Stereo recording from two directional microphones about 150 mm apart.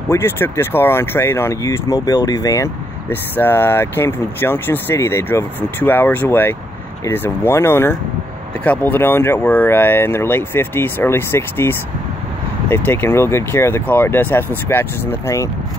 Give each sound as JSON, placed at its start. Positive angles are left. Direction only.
{"t": 0.1, "sound": "speech", "side_deg": 15}